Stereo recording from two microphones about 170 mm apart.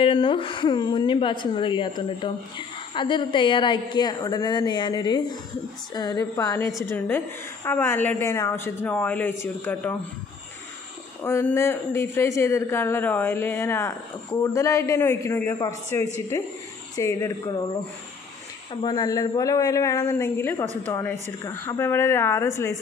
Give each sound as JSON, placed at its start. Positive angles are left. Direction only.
{"t": 0.0, "sound": "a man's voice", "side_deg": 30}
{"t": 11.2, "sound": "a man's voice", "side_deg": 15}
{"t": 18.7, "sound": "speech", "side_deg": 25}